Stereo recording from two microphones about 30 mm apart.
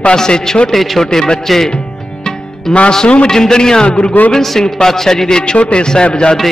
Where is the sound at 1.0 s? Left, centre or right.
Centre.